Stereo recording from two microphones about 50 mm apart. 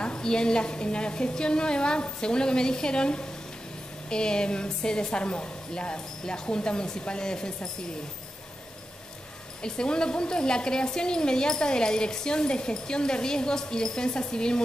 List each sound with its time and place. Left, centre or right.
0.0 s a woman's voice: centre
9.6 s a woman's voice: centre